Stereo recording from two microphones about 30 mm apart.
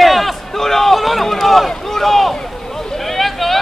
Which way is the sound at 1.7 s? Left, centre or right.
Centre.